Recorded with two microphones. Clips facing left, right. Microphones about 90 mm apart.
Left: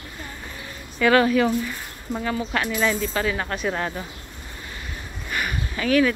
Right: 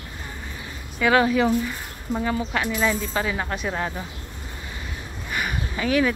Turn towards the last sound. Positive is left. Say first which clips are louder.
# left 2 dB
turn(degrees=-20)  # may be behind; listen again after turning